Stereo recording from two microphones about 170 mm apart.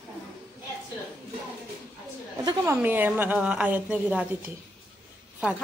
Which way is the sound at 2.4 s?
25° right (ahead or behind).